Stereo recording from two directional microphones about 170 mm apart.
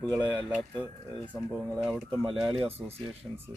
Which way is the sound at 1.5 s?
10° right (ahead or behind).